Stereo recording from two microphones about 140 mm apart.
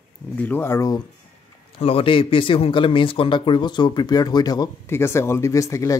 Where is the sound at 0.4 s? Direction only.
15° left (ahead or behind).